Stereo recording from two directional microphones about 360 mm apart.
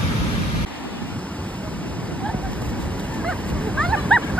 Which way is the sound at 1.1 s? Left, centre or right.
Centre.